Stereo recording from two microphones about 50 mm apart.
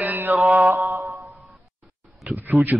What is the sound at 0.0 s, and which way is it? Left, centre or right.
Mantra, right.